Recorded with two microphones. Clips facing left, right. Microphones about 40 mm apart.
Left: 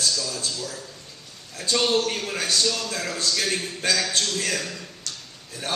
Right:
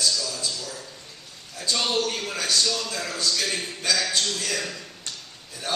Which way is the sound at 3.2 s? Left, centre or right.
Left.